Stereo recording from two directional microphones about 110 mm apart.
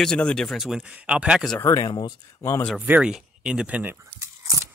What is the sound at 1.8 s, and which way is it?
Speech, 40° left (ahead or behind).